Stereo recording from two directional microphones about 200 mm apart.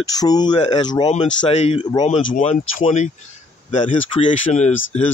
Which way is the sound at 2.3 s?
35° left (ahead or behind).